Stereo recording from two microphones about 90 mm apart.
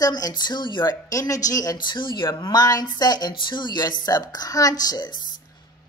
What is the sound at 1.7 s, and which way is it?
Speech, 60° left (ahead or behind).